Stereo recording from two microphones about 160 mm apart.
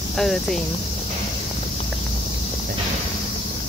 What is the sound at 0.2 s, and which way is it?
Cricket, centre (ahead or behind).